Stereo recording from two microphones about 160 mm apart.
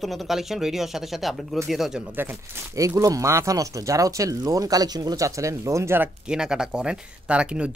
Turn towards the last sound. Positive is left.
turn(degrees=-5)  # may be behind; listen again after turning